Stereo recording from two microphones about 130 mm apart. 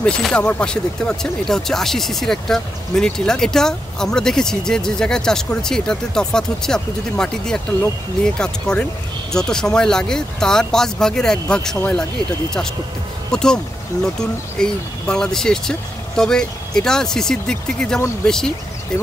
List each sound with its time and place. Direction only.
0.0 s speech: 5° left (ahead or behind)
13.3 s speech: 5° left (ahead or behind)